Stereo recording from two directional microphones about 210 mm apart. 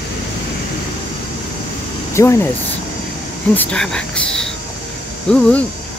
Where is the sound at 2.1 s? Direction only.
15° left (ahead or behind).